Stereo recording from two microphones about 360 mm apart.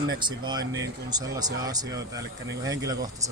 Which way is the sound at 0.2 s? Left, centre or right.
Centre.